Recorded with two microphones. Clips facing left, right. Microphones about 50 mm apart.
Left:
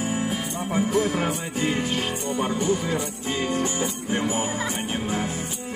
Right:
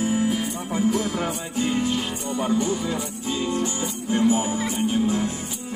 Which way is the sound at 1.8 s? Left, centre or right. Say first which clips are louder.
Right 2 dB; left.